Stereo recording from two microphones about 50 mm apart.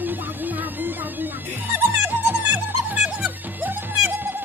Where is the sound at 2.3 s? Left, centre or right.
Right.